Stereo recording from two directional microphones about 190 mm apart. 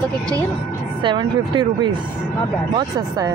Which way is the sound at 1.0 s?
25° right (ahead or behind).